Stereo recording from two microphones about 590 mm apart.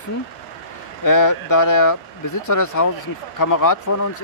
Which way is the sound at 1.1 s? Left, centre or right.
Left.